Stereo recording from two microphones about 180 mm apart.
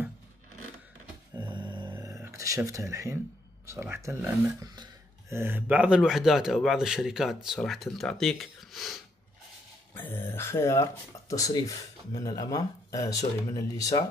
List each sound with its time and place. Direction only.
1.3 s a sound: 25° right (ahead or behind)
1.9 s music: 15° right (ahead or behind)
3.6 s speech: 15° right (ahead or behind)
5.3 s speech: 10° right (ahead or behind)
9.9 s speech: 10° left (ahead or behind)